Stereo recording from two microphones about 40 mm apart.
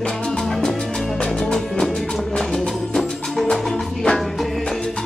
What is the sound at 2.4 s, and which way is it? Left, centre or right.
Music, centre.